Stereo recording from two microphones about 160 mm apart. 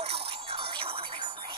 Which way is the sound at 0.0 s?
35° right (ahead or behind).